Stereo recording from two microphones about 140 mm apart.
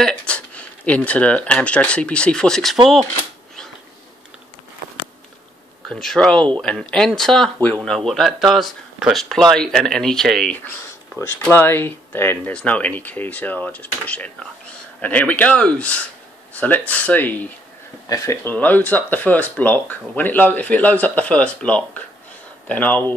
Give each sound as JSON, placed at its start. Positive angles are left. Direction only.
{"t": 0.0, "sound": "speech", "side_deg": 5}
{"t": 5.9, "sound": "speech", "side_deg": 5}
{"t": 18.0, "sound": "speech", "side_deg": 25}